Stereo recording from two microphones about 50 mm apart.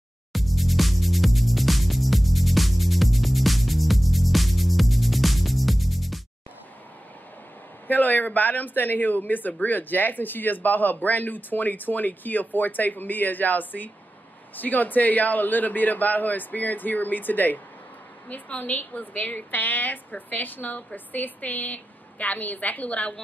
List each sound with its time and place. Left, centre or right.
0.3 s music: centre
7.9 s speech: left